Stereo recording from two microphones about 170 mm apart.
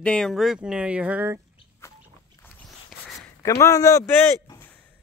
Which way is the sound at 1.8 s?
15° left (ahead or behind).